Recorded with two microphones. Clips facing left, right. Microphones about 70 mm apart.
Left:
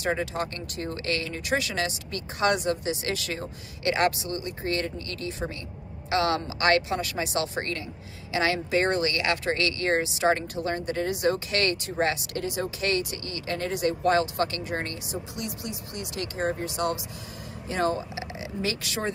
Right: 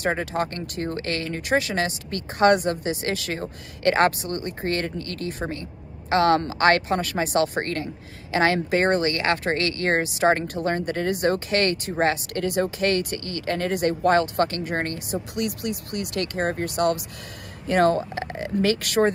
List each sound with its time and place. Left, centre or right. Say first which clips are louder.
0.0 s a woman's voice: right 3 dB; right
15.3 s speech: right 8 dB; right